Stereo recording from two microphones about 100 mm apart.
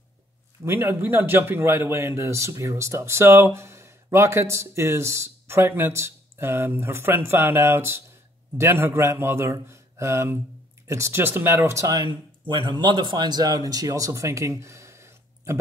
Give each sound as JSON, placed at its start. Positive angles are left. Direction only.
{"t": 0.7, "sound": "a man's voice", "side_deg": -25}